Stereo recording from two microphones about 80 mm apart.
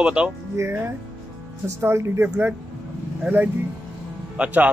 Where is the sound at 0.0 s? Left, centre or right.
Centre.